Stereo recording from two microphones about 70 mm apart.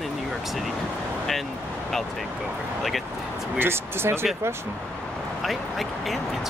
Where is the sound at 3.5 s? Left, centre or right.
Right.